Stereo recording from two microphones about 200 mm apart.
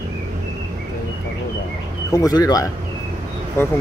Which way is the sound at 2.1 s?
15° left (ahead or behind).